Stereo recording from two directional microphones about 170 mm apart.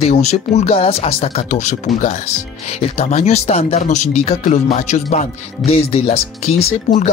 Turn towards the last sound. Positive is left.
turn(degrees=40)  # may be behind; listen again after turning